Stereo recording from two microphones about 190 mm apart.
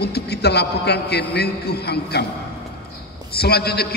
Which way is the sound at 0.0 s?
60° left (ahead or behind).